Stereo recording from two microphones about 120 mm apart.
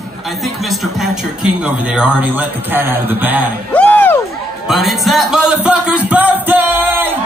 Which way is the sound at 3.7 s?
10° left (ahead or behind).